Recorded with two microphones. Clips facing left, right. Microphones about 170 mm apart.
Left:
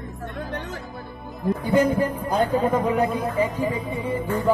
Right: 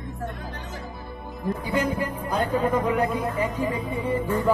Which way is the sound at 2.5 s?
25° left (ahead or behind).